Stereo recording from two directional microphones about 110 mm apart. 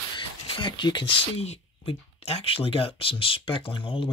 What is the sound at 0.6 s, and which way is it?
Speech, 45° left (ahead or behind).